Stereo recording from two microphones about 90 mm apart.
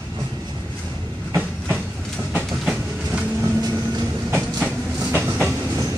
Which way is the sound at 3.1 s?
20° right (ahead or behind).